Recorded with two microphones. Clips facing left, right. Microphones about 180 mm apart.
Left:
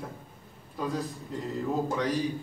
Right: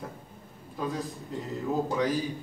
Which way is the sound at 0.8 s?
Centre (ahead or behind).